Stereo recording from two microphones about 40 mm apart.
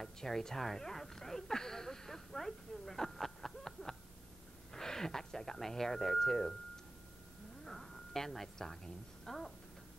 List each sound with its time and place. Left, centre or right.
0.0 s a sound: centre
4.7 s speech: centre
7.6 s a woman's voice: centre